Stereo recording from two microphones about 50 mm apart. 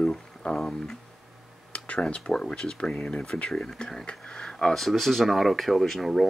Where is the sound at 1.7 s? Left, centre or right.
Left; by 6.3 s centre.